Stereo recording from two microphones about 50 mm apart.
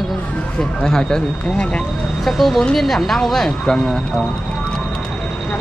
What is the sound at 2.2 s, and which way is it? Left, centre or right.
A woman's voice, centre.